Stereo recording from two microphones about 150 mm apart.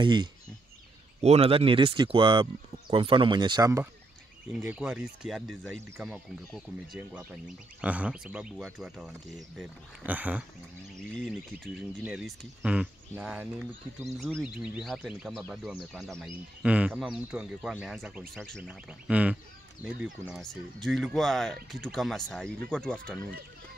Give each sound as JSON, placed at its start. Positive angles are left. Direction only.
{"t": 0.0, "sound": "speech", "side_deg": -30}
{"t": 1.2, "sound": "speech", "side_deg": -45}
{"t": 4.6, "sound": "speech", "side_deg": -5}
{"t": 11.1, "sound": "speech", "side_deg": 5}
{"t": 18.6, "sound": "speech", "side_deg": -5}